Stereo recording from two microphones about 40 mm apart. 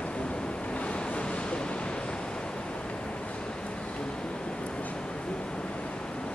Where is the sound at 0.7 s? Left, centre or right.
Left.